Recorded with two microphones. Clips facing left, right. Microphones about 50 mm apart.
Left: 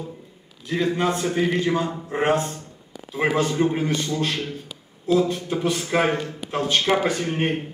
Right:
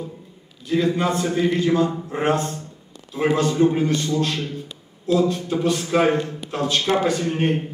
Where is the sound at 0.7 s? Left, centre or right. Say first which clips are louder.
Right 2 dB; centre.